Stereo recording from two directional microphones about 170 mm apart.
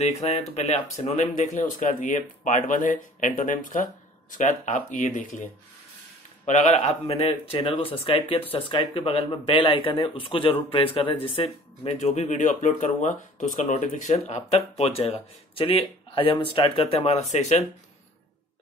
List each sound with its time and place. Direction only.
0.0 s speech: 35° left (ahead or behind)
6.4 s speech: 45° left (ahead or behind)